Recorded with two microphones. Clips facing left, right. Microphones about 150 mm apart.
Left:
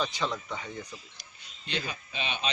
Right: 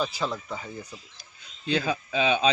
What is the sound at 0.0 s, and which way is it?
Speech, 5° right (ahead or behind).